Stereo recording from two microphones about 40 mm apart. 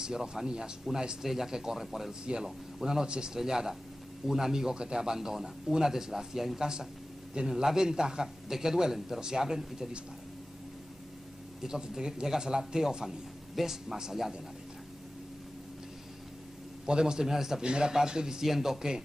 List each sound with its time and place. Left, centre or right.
0.0 s a man's voice: centre
2.2 s a man's voice: centre
11.6 s a man's voice: centre
16.8 s a man's voice: centre